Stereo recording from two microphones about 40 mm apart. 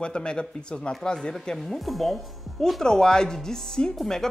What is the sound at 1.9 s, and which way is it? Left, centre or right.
Speech, centre.